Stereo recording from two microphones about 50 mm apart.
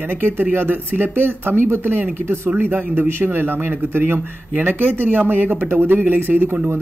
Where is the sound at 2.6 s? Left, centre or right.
Right.